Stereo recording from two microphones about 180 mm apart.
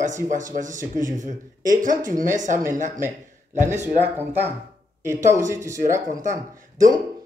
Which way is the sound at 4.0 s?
10° right (ahead or behind).